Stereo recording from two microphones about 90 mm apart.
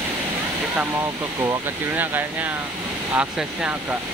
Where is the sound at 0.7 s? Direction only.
25° right (ahead or behind).